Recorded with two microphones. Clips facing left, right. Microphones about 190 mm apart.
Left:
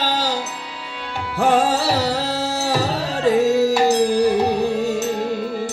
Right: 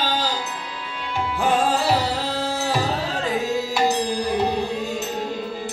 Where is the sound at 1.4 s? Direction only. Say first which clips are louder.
Left 4 dB; 80° left.